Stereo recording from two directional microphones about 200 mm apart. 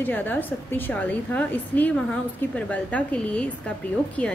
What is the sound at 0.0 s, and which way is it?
A woman's voice, 10° left (ahead or behind).